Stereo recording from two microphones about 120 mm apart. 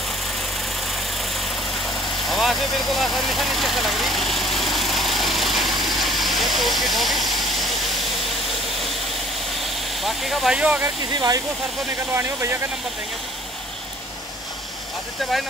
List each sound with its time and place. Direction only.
1.1 s vehicle: centre (ahead or behind)
9.6 s vehicle: centre (ahead or behind)
11.1 s speech: 35° right (ahead or behind)
12.1 s speech: 20° right (ahead or behind)